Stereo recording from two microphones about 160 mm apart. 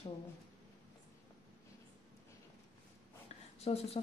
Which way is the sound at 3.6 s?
40° left (ahead or behind).